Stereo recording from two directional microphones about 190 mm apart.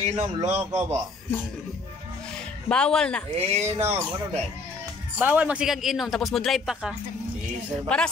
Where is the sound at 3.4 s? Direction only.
35° right (ahead or behind).